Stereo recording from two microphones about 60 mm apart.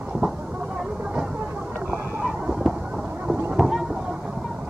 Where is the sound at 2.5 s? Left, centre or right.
Centre.